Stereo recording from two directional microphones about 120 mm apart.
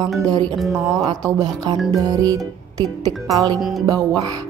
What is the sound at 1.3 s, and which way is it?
Music, 35° right (ahead or behind).